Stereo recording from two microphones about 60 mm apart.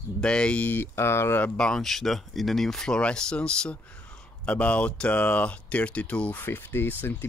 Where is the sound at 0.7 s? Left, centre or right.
Left.